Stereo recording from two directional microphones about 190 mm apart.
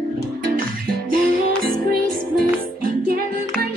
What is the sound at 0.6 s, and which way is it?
Music, 50° right (ahead or behind).